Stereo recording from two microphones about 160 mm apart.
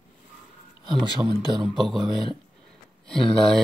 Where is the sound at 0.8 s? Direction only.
30° right (ahead or behind).